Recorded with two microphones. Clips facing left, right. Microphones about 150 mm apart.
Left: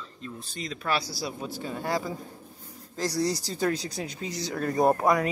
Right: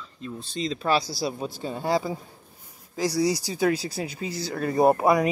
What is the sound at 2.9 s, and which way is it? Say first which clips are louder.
Speech: right 4 dB; 5° right (ahead or behind).